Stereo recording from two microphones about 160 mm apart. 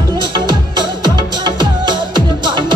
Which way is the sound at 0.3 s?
25° right (ahead or behind).